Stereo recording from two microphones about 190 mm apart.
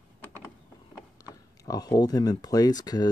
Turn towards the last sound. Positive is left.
turn(degrees=20)  # may be behind; listen again after turning